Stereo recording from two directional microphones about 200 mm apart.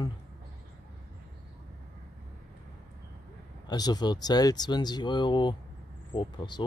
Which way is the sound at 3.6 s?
20° left (ahead or behind).